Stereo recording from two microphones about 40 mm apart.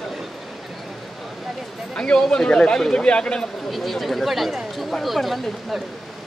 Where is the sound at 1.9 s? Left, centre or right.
Left.